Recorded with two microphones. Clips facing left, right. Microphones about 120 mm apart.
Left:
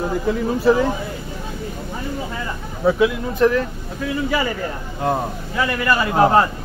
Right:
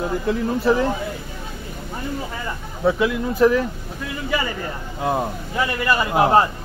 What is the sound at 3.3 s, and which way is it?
Speech, 10° right (ahead or behind).